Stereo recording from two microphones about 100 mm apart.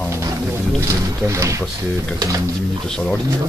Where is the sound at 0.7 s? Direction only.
30° right (ahead or behind).